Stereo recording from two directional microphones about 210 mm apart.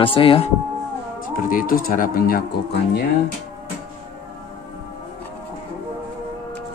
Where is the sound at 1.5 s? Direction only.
40° left (ahead or behind).